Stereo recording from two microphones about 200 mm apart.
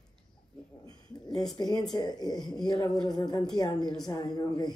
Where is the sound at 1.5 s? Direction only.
20° left (ahead or behind).